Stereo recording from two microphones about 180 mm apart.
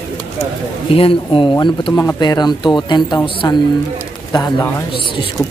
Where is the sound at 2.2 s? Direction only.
25° left (ahead or behind).